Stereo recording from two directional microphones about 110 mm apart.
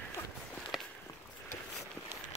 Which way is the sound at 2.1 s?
20° right (ahead or behind).